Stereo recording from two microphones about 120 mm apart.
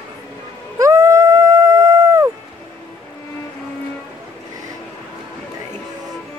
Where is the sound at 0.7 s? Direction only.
25° right (ahead or behind).